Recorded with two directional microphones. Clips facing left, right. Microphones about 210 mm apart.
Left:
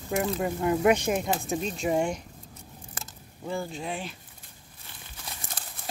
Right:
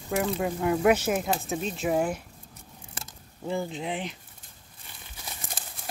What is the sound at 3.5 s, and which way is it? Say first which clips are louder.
Speech: right 2 dB; 20° right (ahead or behind).